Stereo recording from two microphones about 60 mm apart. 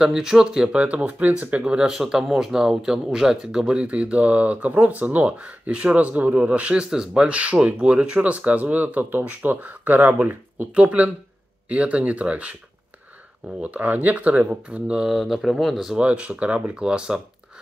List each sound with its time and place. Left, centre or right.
0.0 s speech: centre
0.7 s speech: right
13.6 s speech: right
15.0 s speech: centre
16.0 s speech: right